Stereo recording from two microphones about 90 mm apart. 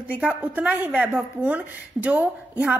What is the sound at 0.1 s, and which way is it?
Speech, 15° right (ahead or behind).